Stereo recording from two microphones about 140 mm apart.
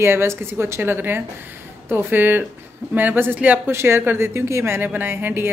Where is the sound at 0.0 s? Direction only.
15° right (ahead or behind).